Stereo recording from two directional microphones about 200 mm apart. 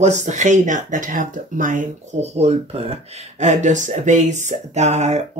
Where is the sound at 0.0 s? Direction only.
35° right (ahead or behind).